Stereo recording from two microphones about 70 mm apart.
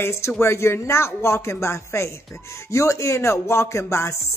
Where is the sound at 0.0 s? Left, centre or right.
Left.